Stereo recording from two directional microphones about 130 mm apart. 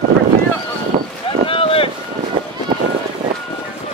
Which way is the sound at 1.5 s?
45° left (ahead or behind).